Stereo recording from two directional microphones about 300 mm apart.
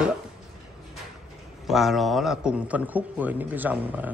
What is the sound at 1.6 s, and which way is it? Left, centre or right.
Speech, centre.